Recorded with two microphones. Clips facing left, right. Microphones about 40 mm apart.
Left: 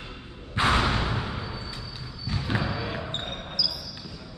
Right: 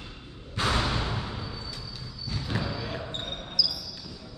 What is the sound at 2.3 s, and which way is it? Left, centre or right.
Basketball bounce, left.